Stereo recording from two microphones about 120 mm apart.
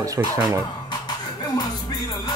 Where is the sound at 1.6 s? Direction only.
35° left (ahead or behind).